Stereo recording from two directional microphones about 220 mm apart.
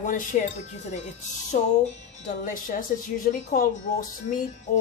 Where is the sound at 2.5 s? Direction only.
40° left (ahead or behind).